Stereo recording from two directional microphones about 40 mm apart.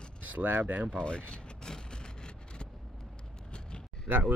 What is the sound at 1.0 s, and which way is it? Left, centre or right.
Speech, left.